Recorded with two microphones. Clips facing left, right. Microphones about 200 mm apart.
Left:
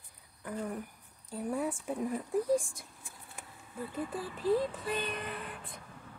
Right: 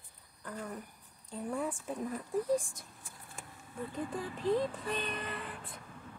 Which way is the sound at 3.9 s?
5° left (ahead or behind).